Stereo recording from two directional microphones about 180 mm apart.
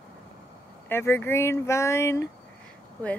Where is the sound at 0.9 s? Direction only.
15° left (ahead or behind).